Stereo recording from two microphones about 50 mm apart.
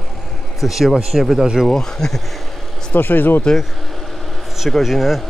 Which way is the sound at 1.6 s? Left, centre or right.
Centre.